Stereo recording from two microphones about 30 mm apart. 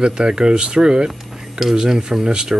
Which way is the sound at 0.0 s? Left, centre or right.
Right.